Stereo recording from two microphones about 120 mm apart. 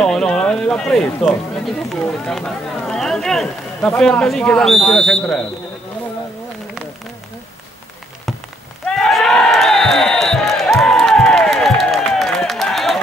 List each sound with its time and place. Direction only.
0.0 s speech: 5° left (ahead or behind)
8.8 s music: 5° left (ahead or behind)